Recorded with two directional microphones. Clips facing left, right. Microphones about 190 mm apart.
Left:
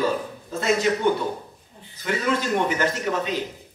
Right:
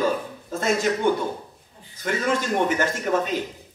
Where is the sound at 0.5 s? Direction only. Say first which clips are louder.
Left 1 dB; 45° right (ahead or behind).